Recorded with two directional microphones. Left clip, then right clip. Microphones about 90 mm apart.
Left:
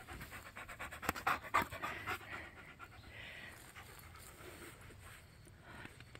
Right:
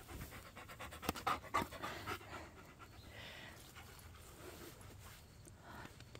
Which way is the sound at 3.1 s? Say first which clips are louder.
Left 2 dB; 45° right (ahead or behind).